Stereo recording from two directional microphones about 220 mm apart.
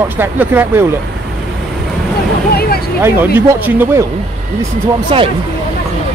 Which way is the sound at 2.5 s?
45° left (ahead or behind).